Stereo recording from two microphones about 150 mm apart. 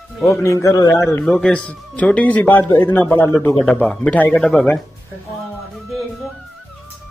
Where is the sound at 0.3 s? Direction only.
20° left (ahead or behind).